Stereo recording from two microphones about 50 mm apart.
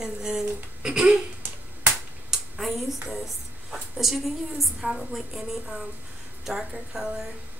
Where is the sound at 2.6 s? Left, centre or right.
Centre.